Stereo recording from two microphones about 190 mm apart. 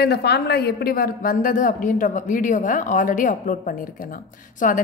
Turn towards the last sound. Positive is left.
turn(degrees=45)  # may be behind; listen again after turning